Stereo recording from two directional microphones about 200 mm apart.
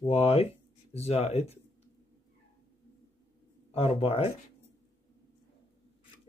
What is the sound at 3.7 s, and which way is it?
Speech, 30° left (ahead or behind).